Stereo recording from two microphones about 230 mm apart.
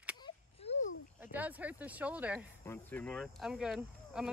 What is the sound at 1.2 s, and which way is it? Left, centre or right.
Speech, centre.